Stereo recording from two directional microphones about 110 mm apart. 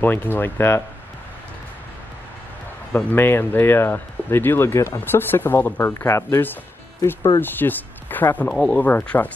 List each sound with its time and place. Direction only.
0.0 s speech: 15° left (ahead or behind)
3.1 s speech: 20° left (ahead or behind)